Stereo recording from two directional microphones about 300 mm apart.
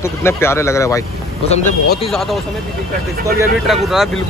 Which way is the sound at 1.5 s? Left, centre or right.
Left.